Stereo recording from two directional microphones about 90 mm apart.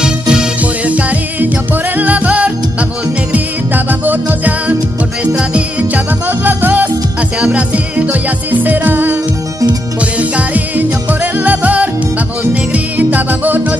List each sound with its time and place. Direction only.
0.0 s music: 10° right (ahead or behind)